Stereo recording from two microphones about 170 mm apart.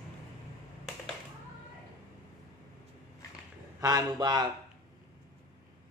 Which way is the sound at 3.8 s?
25° right (ahead or behind).